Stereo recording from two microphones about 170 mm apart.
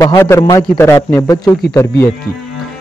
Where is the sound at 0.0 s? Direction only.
15° left (ahead or behind).